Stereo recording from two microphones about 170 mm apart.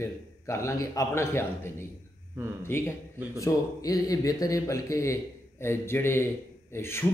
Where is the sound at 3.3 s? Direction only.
20° left (ahead or behind).